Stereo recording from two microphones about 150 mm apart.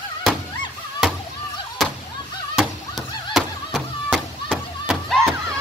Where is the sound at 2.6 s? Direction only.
Centre (ahead or behind).